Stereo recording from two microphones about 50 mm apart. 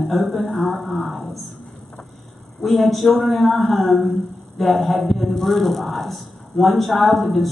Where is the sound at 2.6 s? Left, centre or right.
Centre.